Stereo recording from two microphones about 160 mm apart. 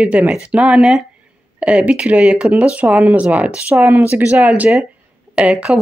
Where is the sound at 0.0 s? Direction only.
5° right (ahead or behind).